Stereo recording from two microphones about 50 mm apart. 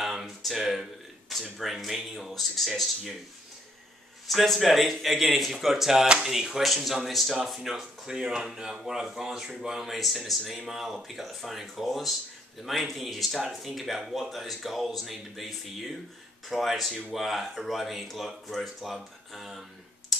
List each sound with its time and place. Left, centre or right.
0.0 s a sound: centre
1.3 s a man's voice: centre
4.3 s a man's voice: centre
20.1 s clicking: centre